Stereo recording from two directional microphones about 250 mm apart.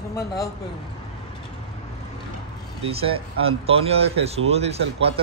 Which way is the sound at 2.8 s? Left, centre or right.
Right.